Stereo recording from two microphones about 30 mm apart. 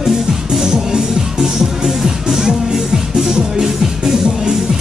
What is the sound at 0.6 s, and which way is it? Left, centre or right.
Music, centre.